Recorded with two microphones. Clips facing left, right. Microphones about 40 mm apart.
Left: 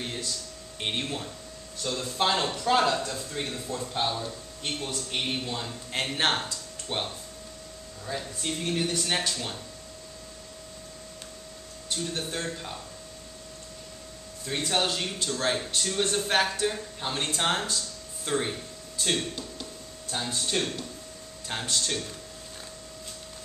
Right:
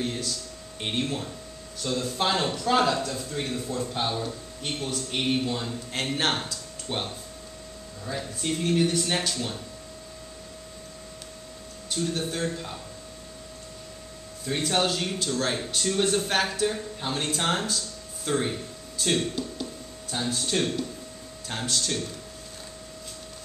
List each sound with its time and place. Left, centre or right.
0.0 s speech: centre
4.1 s speech: centre
4.8 s a man's voice: centre
11.9 s speech: centre
14.4 s a man's voice: centre